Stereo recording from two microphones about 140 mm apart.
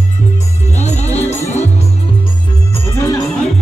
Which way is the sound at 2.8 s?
20° left (ahead or behind).